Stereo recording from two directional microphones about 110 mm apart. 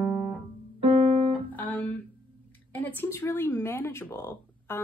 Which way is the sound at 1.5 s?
15° left (ahead or behind).